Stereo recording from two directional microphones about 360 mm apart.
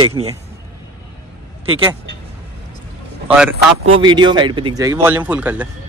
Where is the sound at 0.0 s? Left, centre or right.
Centre.